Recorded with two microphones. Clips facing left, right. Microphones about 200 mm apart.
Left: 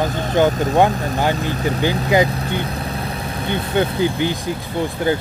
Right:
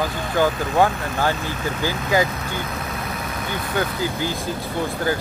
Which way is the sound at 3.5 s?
25° left (ahead or behind).